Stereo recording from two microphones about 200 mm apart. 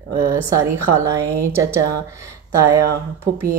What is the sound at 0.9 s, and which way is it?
Speech, 15° right (ahead or behind).